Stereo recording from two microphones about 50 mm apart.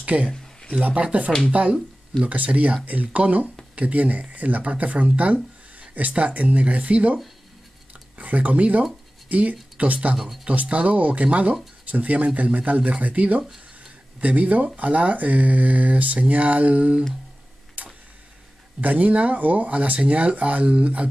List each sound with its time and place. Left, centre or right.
0.1 s speech: right
8.2 s speech: right
10.1 s speech: centre
10.5 s speech: right
17.8 s tick-tock: right
18.8 s speech: right